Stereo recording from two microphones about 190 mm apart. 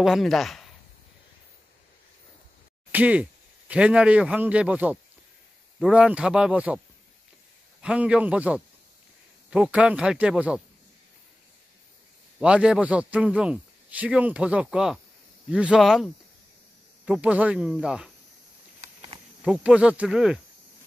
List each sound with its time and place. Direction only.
0.0 s speech: centre (ahead or behind)
2.9 s speech: 10° right (ahead or behind)
7.8 s a man's voice: 5° right (ahead or behind)
12.4 s a man's voice: 5° right (ahead or behind)
19.4 s speech: 5° right (ahead or behind)